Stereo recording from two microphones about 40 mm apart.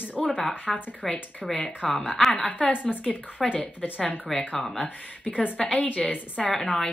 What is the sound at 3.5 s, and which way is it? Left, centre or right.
Speech, left.